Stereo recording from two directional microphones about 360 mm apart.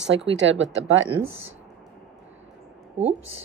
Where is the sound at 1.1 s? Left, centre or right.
Centre.